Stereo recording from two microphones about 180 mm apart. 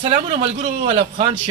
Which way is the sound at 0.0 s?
35° right (ahead or behind).